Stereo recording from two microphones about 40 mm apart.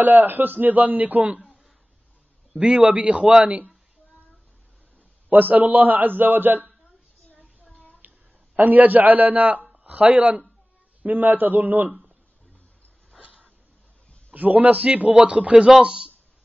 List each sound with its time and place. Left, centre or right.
0.0 s a man's voice: right
2.6 s a man's voice: right
5.3 s a man's voice: right
7.7 s a sound: left
8.5 s a man's voice: right
14.3 s a man's voice: right
15.8 s a man's voice: centre